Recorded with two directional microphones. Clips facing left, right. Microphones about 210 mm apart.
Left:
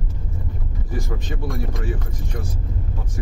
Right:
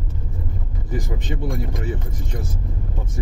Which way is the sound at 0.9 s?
20° right (ahead or behind).